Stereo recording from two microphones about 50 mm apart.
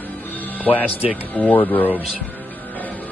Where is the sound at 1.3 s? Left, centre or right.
Left.